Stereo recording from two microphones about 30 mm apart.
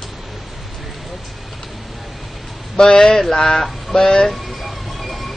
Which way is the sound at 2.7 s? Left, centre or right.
Left.